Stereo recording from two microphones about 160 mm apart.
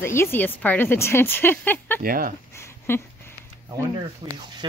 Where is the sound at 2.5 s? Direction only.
15° left (ahead or behind).